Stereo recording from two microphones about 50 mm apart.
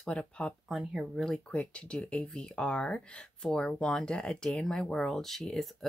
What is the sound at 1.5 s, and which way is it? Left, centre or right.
Speech, left.